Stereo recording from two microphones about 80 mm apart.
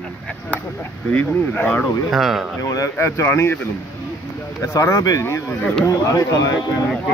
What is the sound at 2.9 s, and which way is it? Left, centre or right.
Speech, left.